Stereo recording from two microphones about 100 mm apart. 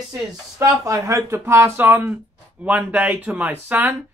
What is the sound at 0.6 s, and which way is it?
Speech, 30° right (ahead or behind).